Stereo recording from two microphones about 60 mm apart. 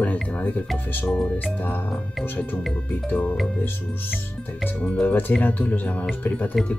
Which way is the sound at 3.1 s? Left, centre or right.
Left.